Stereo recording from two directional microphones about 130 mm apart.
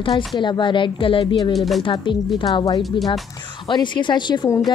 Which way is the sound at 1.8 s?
40° left (ahead or behind).